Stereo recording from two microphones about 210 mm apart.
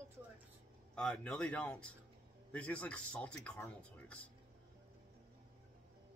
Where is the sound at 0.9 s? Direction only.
5° left (ahead or behind).